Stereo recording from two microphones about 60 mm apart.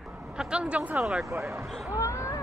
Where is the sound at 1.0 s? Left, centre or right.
Centre.